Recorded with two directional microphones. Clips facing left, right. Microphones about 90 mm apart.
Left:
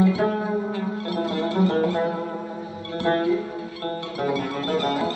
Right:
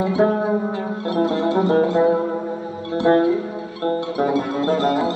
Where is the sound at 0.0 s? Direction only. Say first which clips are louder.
Right 3 dB; 25° right (ahead or behind).